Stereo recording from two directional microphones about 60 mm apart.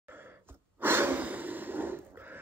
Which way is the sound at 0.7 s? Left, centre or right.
Right.